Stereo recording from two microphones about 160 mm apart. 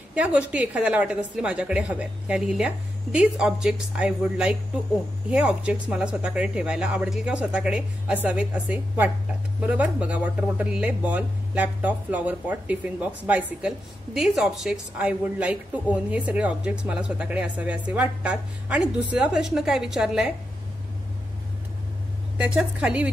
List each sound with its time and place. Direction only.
0.1 s speech: 10° right (ahead or behind)
22.4 s speech: 5° right (ahead or behind)